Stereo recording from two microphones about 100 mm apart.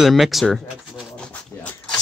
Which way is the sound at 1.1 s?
10° left (ahead or behind).